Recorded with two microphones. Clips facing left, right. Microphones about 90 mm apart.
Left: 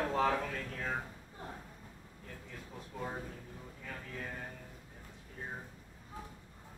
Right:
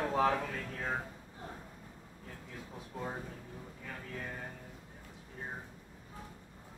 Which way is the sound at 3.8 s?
5° right (ahead or behind).